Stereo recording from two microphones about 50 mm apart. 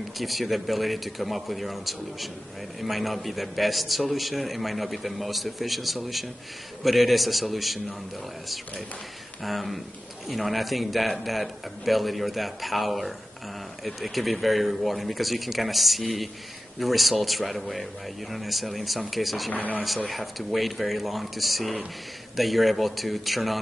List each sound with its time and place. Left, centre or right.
0.2 s a man's voice: centre
9.4 s a man's voice: centre
19.5 s speech: left
20.1 s a man's voice: centre